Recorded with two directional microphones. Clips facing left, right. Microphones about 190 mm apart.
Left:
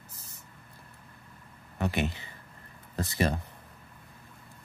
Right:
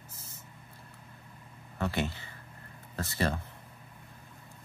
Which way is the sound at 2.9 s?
15° left (ahead or behind).